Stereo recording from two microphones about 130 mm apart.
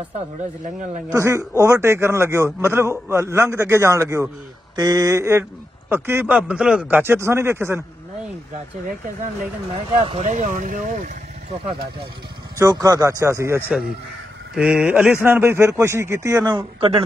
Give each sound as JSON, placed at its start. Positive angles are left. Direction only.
{"t": 1.1, "sound": "a man's voice", "side_deg": -20}
{"t": 9.9, "sound": "speech", "side_deg": -45}
{"t": 10.2, "sound": "speech", "side_deg": -70}
{"t": 12.5, "sound": "a man's voice", "side_deg": -25}
{"t": 14.5, "sound": "a man's voice", "side_deg": -5}
{"t": 16.5, "sound": "speech", "side_deg": -45}